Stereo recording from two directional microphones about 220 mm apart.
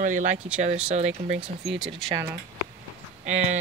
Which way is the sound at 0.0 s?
35° right (ahead or behind).